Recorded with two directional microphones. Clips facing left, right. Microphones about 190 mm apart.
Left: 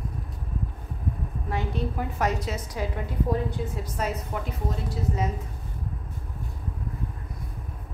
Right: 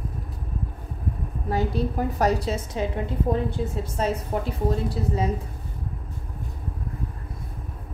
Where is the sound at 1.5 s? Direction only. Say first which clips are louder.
Right 5 dB; 40° right (ahead or behind).